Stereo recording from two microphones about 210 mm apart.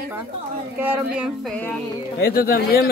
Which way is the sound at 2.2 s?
45° left (ahead or behind).